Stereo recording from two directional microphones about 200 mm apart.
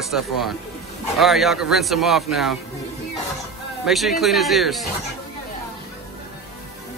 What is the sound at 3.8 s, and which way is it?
Speech, centre (ahead or behind).